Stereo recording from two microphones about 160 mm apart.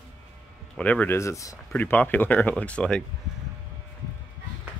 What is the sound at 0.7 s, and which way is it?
Speech, 10° left (ahead or behind).